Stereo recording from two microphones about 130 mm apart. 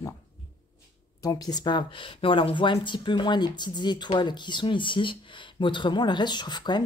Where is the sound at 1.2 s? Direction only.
30° left (ahead or behind).